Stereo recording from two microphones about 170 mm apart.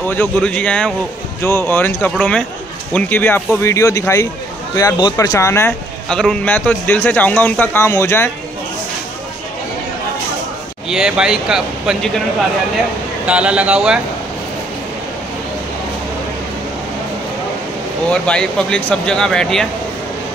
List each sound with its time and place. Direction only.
0.1 s a man's voice: 10° left (ahead or behind)
6.0 s a man's voice: 5° left (ahead or behind)
10.9 s speech: 5° right (ahead or behind)
13.3 s speech: 5° right (ahead or behind)
18.1 s speech: 5° left (ahead or behind)